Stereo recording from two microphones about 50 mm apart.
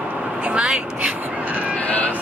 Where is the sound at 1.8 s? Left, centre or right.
Left.